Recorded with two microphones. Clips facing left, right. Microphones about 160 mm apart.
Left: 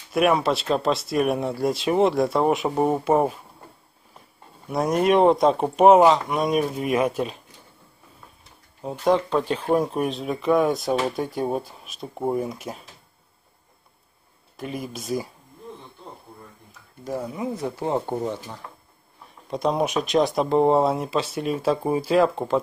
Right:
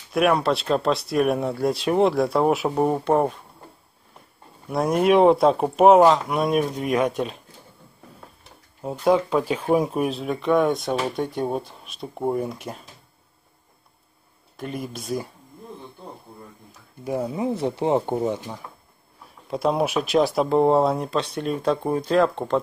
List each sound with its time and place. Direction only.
0.1 s speech: centre (ahead or behind)
4.6 s speech: centre (ahead or behind)
8.8 s speech: 5° right (ahead or behind)
14.6 s speech: centre (ahead or behind)
17.2 s speech: 25° right (ahead or behind)
19.2 s speech: 5° right (ahead or behind)